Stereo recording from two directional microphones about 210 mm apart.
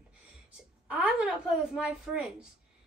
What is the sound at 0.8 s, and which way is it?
A woman's voice, 5° right (ahead or behind).